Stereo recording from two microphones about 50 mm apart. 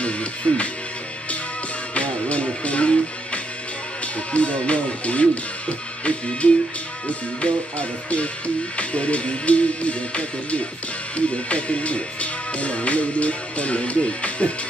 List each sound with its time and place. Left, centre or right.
0.0 s music: left
2.0 s music: left
4.0 s speech: left